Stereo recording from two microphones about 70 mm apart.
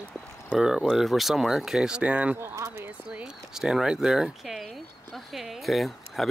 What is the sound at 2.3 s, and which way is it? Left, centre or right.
Speech, right.